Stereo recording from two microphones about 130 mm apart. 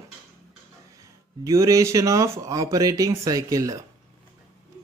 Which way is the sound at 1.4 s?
25° right (ahead or behind).